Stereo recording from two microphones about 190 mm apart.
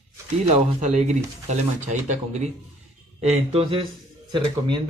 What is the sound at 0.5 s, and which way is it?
Speech, 40° right (ahead or behind).